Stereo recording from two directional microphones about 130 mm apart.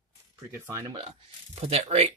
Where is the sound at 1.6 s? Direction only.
50° right (ahead or behind).